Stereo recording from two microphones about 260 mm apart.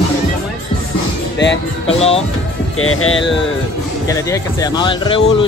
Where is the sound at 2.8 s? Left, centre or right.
Left.